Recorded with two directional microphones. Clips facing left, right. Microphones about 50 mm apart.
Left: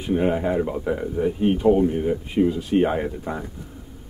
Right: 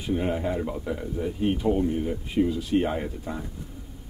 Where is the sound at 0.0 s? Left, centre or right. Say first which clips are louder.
Left 5 dB; left.